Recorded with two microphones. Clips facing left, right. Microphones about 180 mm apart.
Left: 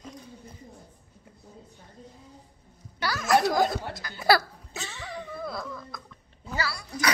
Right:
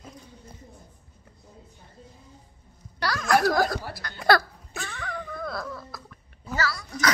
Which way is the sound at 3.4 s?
20° left (ahead or behind).